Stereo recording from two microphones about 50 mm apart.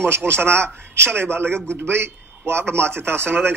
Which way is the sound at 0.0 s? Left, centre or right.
Right.